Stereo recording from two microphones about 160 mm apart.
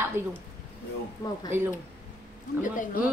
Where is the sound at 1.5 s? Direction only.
15° right (ahead or behind).